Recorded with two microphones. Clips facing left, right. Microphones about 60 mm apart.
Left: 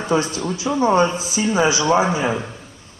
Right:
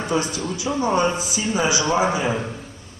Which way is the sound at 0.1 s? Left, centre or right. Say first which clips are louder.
Left 5 dB; left.